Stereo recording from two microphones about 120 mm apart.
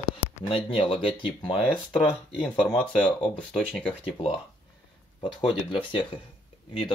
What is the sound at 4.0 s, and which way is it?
Speech, 50° left (ahead or behind).